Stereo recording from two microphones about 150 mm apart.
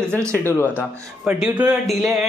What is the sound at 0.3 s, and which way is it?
Speech, 15° left (ahead or behind).